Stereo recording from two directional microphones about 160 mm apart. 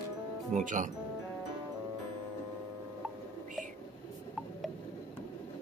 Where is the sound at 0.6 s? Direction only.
50° right (ahead or behind).